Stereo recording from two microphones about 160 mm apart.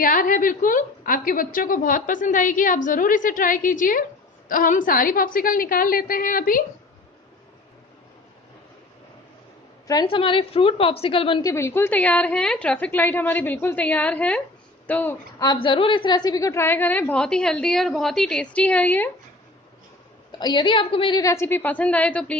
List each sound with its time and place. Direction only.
0.0 s a woman's voice: 60° left (ahead or behind)
9.8 s a woman's voice: 30° left (ahead or behind)
11.4 s a woman's voice: 15° left (ahead or behind)
15.3 s a woman's voice: 25° left (ahead or behind); by 19.0 s 10° left (ahead or behind)
20.2 s a woman's voice: 25° left (ahead or behind)
21.2 s a woman's voice: 15° left (ahead or behind)